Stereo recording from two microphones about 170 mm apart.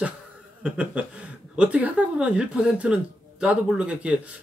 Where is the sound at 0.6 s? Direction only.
5° right (ahead or behind).